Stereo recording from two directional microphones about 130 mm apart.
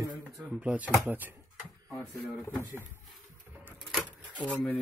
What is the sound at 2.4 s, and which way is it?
Speech, 20° left (ahead or behind).